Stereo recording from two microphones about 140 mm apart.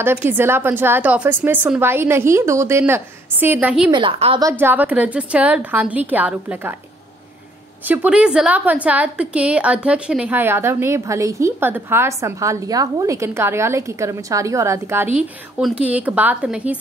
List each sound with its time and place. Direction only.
0.0 s a woman's voice: 15° right (ahead or behind)
3.9 s a woman's voice: 35° right (ahead or behind)
4.4 s a woman's voice: 20° right (ahead or behind)
7.8 s a woman's voice: 15° right (ahead or behind)